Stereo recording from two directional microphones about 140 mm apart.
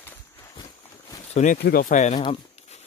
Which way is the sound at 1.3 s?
65° left (ahead or behind).